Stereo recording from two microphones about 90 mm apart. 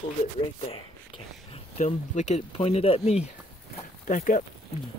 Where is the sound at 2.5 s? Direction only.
90° left.